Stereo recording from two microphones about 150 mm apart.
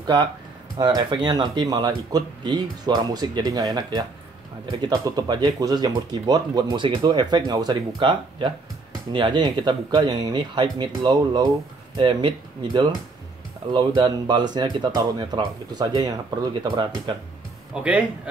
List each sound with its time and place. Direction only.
0.0 s speech: 30° right (ahead or behind)
17.8 s a man's voice: 10° right (ahead or behind)